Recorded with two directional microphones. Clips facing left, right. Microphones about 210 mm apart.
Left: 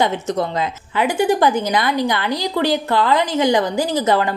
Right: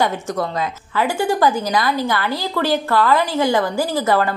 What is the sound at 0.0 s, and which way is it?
A woman's voice, 20° left (ahead or behind).